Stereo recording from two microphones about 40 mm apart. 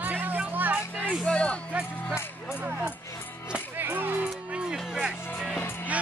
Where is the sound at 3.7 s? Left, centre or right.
Right.